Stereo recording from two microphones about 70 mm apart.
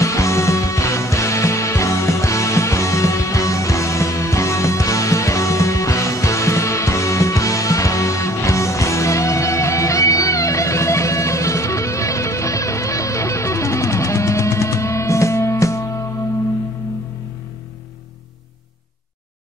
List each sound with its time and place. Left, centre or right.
0.0 s music: left